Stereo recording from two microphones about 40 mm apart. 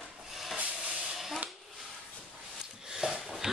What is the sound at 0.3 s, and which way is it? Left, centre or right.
Rub, centre.